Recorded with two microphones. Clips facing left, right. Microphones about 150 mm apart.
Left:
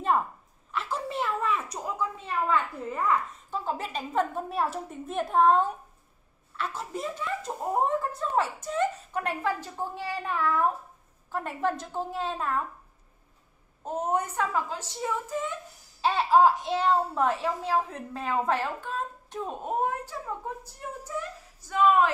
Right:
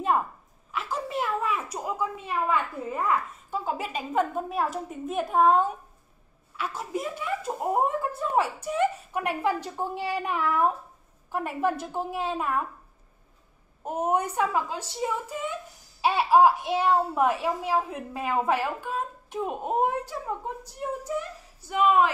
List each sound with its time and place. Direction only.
0.7 s a sound: centre (ahead or behind)
2.2 s a child's voice: 10° right (ahead or behind)
13.8 s a child's voice: 10° right (ahead or behind)